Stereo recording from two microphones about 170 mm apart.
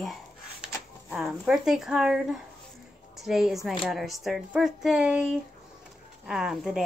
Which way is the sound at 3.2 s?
5° right (ahead or behind).